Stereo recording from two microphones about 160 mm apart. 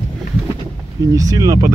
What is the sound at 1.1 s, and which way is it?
Speech, 20° right (ahead or behind).